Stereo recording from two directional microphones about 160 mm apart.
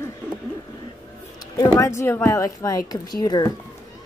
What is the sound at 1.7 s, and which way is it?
Speech, 20° left (ahead or behind).